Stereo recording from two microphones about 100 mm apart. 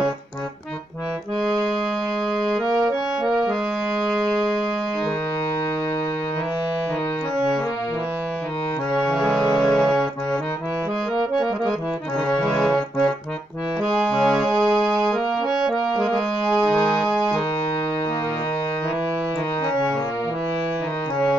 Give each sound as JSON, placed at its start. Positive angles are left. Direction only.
{"t": 9.1, "sound": "music", "side_deg": 5}
{"t": 11.1, "sound": "accordion", "side_deg": 0}
{"t": 14.2, "sound": "organ", "side_deg": 5}
{"t": 14.9, "sound": "accordion", "side_deg": 5}
{"t": 15.6, "sound": "music", "side_deg": 5}
{"t": 16.7, "sound": "music", "side_deg": 45}